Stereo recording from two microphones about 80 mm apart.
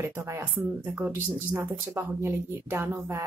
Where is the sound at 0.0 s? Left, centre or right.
Right.